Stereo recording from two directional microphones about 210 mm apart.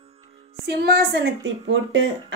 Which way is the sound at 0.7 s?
50° right (ahead or behind).